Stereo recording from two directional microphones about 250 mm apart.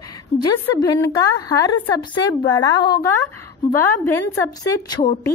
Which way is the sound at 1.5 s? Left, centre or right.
Centre.